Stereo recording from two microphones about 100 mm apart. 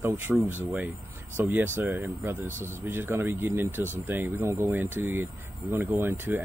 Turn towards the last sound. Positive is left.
turn(degrees=-20)  # may be behind; listen again after turning